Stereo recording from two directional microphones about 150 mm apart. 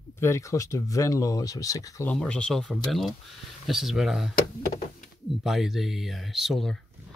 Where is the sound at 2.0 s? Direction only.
5° left (ahead or behind).